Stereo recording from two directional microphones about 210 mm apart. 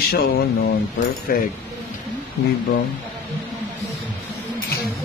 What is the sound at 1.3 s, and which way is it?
Speech, 45° left (ahead or behind).